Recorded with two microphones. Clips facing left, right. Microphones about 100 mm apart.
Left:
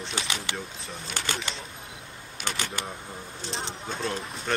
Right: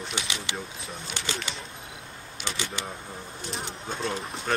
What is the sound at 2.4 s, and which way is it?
Speech, 50° left (ahead or behind).